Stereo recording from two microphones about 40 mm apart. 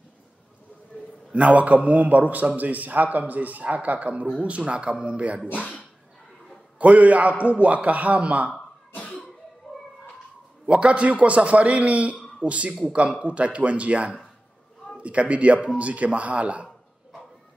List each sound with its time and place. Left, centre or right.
1.3 s a man's voice: right
6.8 s a man's voice: right
8.9 s cough: left
10.7 s a man's voice: right